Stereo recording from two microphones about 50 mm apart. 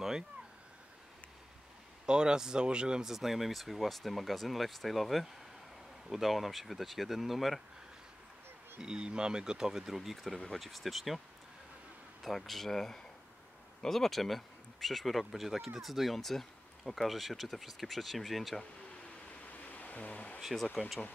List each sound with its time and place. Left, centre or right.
2.0 s speech: centre
8.8 s speech: centre
12.2 s speech: centre
19.4 s a sound: left
20.3 s speech: centre